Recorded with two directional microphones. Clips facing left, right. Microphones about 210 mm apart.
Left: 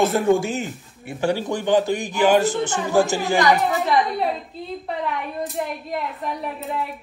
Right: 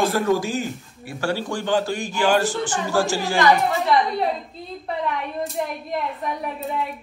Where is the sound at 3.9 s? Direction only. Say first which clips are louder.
Even; centre (ahead or behind).